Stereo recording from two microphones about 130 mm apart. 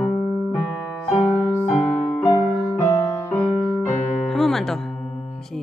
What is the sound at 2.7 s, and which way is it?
Music, 20° left (ahead or behind).